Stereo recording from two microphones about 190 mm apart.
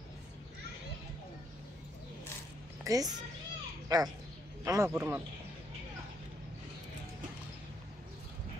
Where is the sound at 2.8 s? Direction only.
20° right (ahead or behind).